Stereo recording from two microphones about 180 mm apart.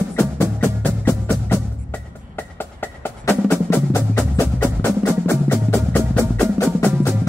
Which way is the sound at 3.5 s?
10° left (ahead or behind).